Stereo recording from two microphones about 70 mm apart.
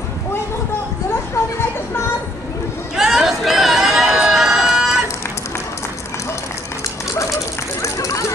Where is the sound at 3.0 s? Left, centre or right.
Centre.